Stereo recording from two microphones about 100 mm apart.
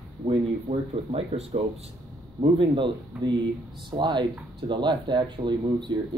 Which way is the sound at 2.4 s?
60° right (ahead or behind).